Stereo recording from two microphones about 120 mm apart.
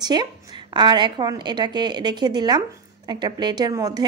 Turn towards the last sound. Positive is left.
turn(degrees=-35)  # may be behind; listen again after turning